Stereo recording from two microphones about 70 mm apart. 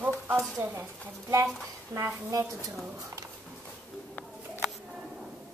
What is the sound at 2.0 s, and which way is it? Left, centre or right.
Speech, right.